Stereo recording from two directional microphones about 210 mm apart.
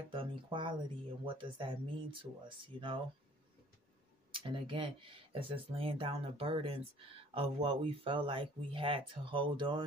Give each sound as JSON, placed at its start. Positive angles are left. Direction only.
{"t": 0.1, "sound": "speech", "side_deg": -25}
{"t": 4.3, "sound": "speech", "side_deg": -25}